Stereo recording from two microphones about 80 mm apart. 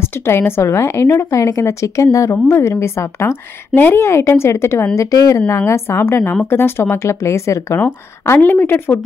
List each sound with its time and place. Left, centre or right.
0.0 s a woman's voice: left
5.7 s a woman's voice: left
8.4 s a woman's voice: left